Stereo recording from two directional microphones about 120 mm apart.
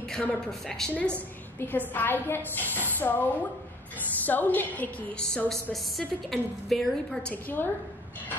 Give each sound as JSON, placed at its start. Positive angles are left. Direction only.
{"t": 0.1, "sound": "a woman's voice", "side_deg": 5}
{"t": 1.6, "sound": "a woman's voice", "side_deg": 15}
{"t": 7.4, "sound": "a woman's voice", "side_deg": 15}